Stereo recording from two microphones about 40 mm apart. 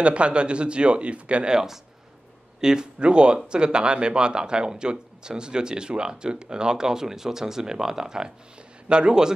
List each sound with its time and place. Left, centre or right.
0.0 s a man's voice: right
1.5 s a man's voice: centre